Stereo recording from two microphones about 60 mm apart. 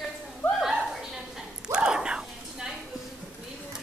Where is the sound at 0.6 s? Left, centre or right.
Centre.